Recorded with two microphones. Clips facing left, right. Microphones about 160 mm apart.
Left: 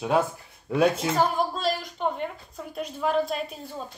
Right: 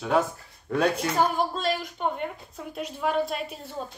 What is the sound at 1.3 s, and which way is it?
A woman's voice, centre (ahead or behind).